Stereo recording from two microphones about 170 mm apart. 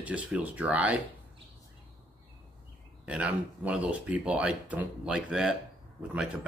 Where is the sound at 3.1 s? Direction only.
5° right (ahead or behind).